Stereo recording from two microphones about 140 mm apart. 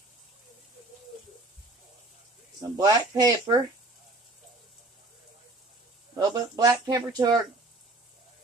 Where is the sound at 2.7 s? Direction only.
25° right (ahead or behind).